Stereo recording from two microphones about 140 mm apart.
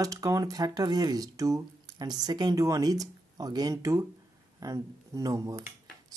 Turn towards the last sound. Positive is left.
turn(degrees=-25)  # may be behind; listen again after turning